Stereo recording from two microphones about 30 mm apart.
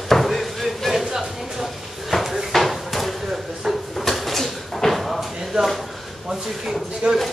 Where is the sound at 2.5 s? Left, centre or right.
Centre.